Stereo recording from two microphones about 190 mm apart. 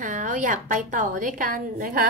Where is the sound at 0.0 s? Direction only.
40° right (ahead or behind).